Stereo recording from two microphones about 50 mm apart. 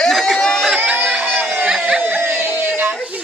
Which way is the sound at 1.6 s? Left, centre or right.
Centre.